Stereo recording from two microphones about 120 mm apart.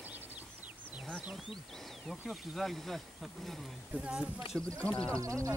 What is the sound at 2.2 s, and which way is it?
Speech, centre (ahead or behind).